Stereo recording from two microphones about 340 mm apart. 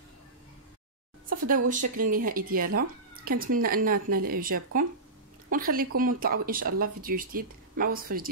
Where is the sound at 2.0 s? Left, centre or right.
Right.